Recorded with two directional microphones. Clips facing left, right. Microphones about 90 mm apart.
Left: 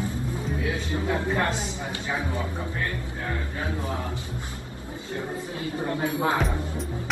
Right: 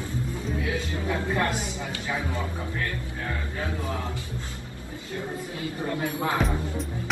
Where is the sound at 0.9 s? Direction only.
20° left (ahead or behind).